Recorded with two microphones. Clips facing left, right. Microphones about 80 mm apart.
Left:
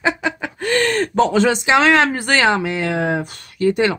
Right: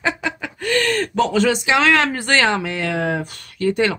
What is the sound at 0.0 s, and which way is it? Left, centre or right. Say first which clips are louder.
Laughter: left 3 dB; centre.